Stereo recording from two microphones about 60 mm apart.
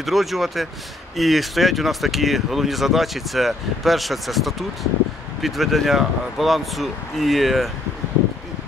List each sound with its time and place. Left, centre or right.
0.0 s speech: centre